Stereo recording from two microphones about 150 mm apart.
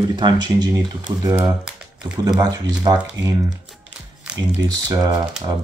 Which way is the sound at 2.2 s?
25° right (ahead or behind).